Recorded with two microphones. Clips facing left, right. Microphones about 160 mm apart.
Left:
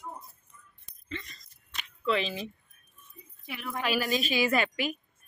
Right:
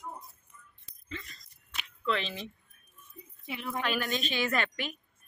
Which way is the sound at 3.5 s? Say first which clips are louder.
Right 1 dB; 20° right (ahead or behind).